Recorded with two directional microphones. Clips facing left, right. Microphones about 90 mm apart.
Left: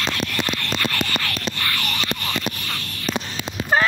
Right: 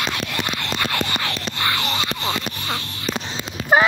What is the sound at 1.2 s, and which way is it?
Music, 20° right (ahead or behind).